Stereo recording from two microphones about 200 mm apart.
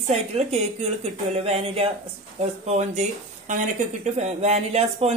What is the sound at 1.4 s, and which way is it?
Speech, 30° right (ahead or behind).